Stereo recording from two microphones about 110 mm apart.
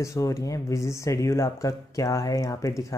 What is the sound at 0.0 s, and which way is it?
Speech, 30° left (ahead or behind).